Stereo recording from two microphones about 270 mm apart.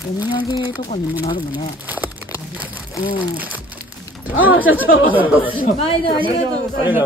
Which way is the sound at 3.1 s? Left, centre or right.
Centre.